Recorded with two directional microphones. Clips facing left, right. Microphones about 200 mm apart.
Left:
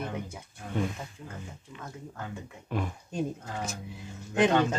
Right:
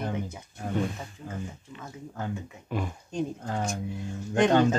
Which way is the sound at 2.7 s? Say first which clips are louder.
Right 1 dB; 5° left (ahead or behind).